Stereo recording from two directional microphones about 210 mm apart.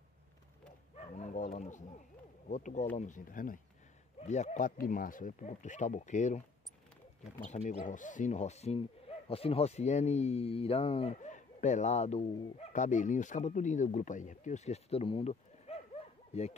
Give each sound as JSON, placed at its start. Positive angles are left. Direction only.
{"t": 0.9, "sound": "speech", "side_deg": 35}